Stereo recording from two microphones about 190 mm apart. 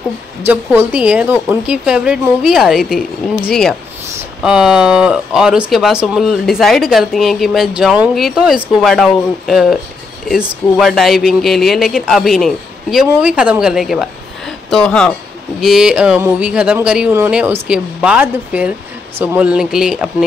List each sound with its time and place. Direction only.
0.5 s speech: 10° right (ahead or behind)